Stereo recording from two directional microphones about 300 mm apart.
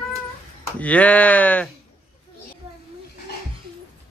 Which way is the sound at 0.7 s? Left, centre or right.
Centre.